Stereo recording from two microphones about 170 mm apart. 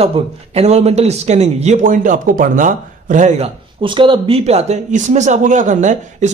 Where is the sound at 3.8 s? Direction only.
30° right (ahead or behind).